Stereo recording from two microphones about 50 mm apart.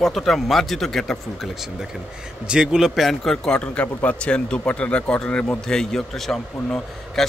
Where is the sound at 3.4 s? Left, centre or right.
Centre.